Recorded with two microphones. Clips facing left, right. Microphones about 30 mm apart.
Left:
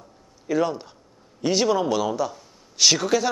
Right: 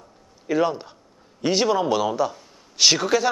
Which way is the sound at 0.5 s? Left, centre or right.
Centre.